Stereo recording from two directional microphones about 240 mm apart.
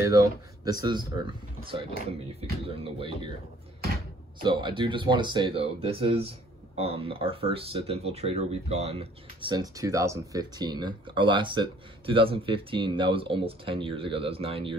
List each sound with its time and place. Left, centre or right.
0.0 s speech: centre
2.6 s speech: right
4.4 s speech: right